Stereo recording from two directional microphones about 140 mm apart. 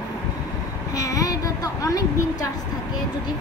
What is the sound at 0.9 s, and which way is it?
A woman's voice, 25° left (ahead or behind).